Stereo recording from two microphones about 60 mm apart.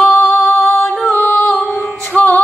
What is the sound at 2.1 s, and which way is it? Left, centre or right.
Music, left.